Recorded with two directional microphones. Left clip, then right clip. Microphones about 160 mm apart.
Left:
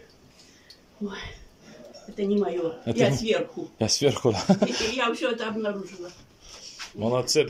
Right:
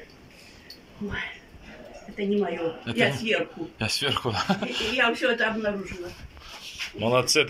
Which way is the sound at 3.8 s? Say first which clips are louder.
Left 3 dB; 45° left (ahead or behind).